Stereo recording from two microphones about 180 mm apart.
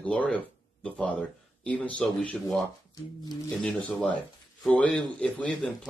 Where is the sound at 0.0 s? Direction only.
10° left (ahead or behind).